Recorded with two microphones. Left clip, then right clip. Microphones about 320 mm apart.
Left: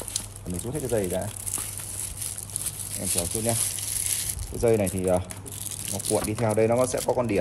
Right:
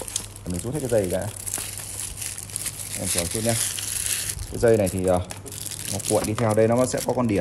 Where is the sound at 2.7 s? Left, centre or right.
Centre.